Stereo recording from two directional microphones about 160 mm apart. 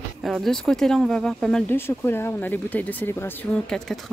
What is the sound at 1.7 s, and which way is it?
Speech, 15° left (ahead or behind).